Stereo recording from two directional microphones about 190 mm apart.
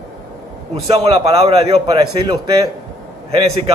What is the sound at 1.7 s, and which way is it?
Speech, 20° right (ahead or behind).